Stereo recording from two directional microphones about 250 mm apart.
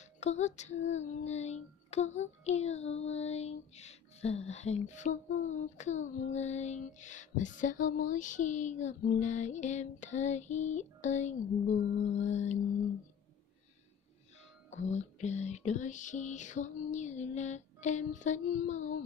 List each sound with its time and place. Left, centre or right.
0.0 s music: left
14.7 s music: left